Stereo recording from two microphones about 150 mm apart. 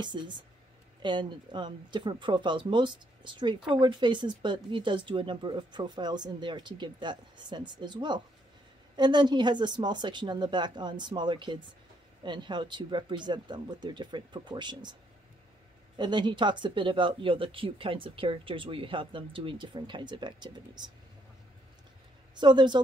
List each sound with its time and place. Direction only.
0.0 s speech: 30° right (ahead or behind)
16.0 s speech: 30° right (ahead or behind)
22.3 s speech: 30° right (ahead or behind)